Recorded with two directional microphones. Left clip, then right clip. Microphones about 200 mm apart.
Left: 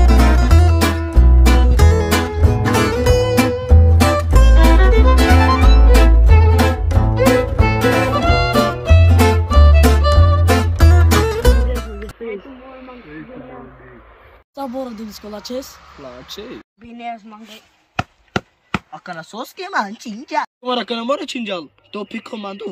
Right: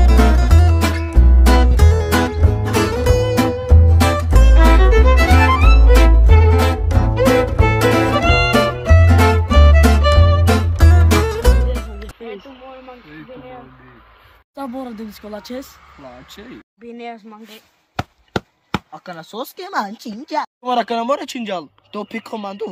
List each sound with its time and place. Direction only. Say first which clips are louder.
0.0 s music: left 1 dB; centre (ahead or behind)
14.5 s a sound: left 3 dB; 10° right (ahead or behind)
15.3 s speech: left 3 dB; 5° right (ahead or behind)
16.9 s speech: left 3 dB; 25° right (ahead or behind)
18.3 s chop: left 1 dB; 35° right (ahead or behind)
18.9 s speech: left 2 dB; 35° right (ahead or behind)
20.6 s speech: right 2 dB; 20° right (ahead or behind)